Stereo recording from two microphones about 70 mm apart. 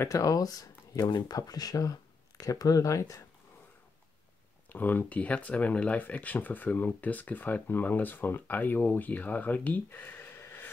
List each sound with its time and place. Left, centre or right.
0.1 s speech: left
4.6 s speech: left